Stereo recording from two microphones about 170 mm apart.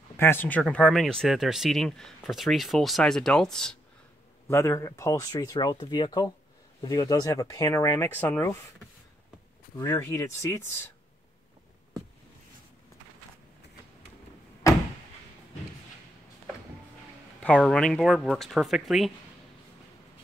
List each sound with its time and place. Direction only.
0.2 s speech: 10° left (ahead or behind)
4.5 s speech: 15° left (ahead or behind)
9.8 s speech: 15° left (ahead or behind)
17.4 s speech: 5° left (ahead or behind)